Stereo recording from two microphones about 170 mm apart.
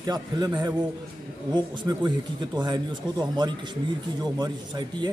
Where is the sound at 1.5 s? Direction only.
25° right (ahead or behind).